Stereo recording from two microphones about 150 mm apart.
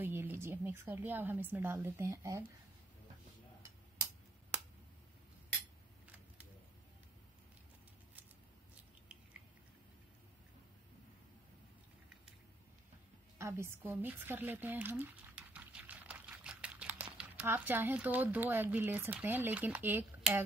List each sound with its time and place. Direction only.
0.0 s a woman's voice: 15° right (ahead or behind)
4.5 s finger snapping: 10° right (ahead or behind)
13.4 s a sound: 20° right (ahead or behind)
17.5 s speech: 15° right (ahead or behind)